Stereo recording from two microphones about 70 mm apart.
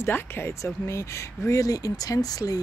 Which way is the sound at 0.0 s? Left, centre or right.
Left.